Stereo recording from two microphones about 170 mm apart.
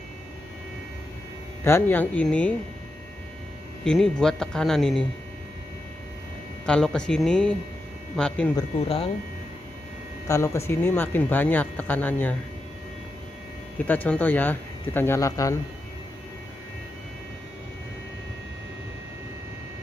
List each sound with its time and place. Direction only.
1.6 s speech: 15° left (ahead or behind)
3.8 s speech: 5° left (ahead or behind)
6.6 s speech: 5° left (ahead or behind)
8.8 s speech: 35° left (ahead or behind)
10.2 s speech: 15° left (ahead or behind)
13.7 s speech: 10° left (ahead or behind)